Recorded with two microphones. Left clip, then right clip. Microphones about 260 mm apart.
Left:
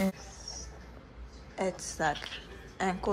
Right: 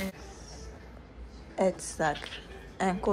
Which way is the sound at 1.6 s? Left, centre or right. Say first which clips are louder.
Right 4 dB; centre.